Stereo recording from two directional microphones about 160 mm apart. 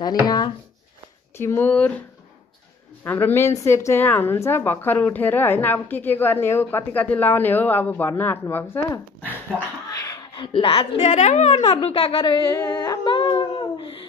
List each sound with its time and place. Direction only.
0.0 s speech: 25° left (ahead or behind)
1.4 s a woman's voice: 15° left (ahead or behind); by 12.4 s 30° left (ahead or behind)
12.5 s humming: 20° left (ahead or behind)